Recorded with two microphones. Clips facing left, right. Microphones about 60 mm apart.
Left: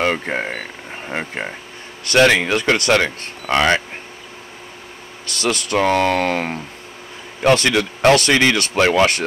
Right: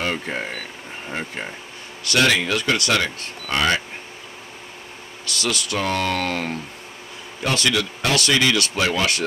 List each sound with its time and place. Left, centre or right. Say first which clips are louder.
0.0 s speech: left 5 dB; left
5.2 s speech: left 4 dB; left